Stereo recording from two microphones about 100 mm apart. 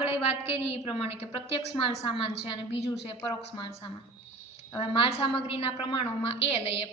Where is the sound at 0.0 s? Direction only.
90° left.